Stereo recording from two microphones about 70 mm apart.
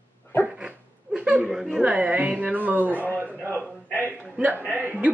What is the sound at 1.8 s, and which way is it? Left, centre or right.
Speech, right.